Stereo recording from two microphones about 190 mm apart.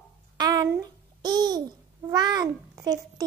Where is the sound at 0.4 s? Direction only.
20° right (ahead or behind).